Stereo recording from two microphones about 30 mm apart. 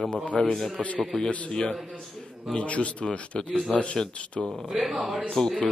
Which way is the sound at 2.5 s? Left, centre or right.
Left.